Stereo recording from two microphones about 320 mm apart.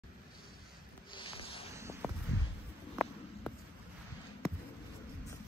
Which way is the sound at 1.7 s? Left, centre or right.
Centre.